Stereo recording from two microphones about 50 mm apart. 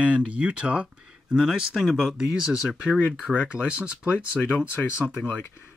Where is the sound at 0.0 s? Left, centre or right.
Right.